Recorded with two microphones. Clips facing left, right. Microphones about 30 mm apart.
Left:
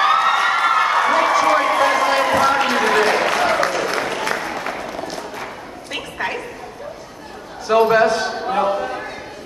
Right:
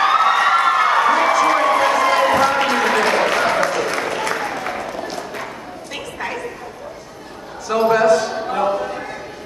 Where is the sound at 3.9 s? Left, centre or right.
Centre.